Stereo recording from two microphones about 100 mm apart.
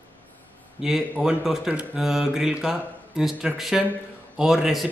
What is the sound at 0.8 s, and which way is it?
Speech, 5° right (ahead or behind).